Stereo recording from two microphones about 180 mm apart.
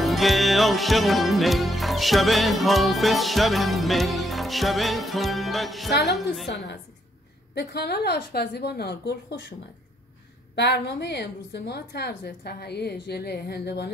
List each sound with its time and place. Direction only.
0.0 s music: centre (ahead or behind)
7.5 s a woman's voice: 65° left (ahead or behind)
10.5 s a woman's voice: 70° left (ahead or behind)